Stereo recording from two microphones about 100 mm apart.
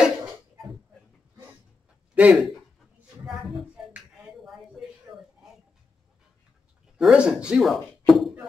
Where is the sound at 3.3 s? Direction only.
10° right (ahead or behind).